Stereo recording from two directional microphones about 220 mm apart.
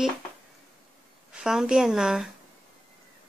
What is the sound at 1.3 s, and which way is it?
Speech, centre (ahead or behind).